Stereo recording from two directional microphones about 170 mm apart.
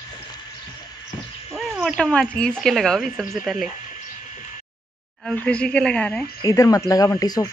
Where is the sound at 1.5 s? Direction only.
Centre (ahead or behind).